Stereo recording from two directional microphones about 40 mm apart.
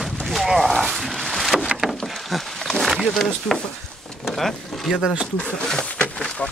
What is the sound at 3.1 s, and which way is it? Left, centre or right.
Speech, centre.